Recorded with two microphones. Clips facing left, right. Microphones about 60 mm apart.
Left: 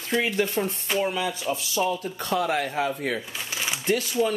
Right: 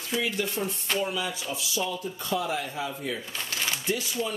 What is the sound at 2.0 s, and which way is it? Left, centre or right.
Speech, left.